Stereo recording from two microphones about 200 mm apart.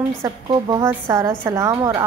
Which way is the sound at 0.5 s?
20° right (ahead or behind).